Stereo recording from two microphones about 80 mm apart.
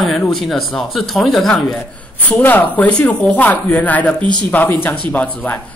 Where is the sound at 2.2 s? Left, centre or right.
Left.